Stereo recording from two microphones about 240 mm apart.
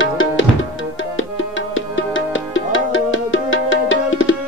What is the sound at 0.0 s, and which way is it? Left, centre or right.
Music, left.